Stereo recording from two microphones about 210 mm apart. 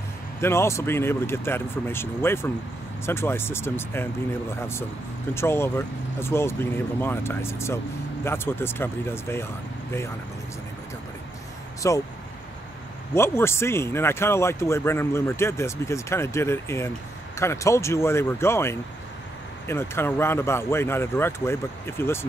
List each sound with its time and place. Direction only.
0.4 s speech: 10° left (ahead or behind)
11.8 s speech: 15° left (ahead or behind)
13.1 s speech: 10° left (ahead or behind)